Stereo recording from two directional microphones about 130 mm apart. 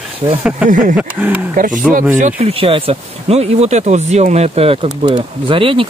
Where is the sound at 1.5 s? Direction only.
90° right.